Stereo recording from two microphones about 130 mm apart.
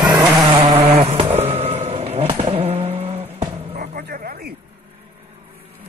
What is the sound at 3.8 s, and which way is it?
Bow-wow, 90° right.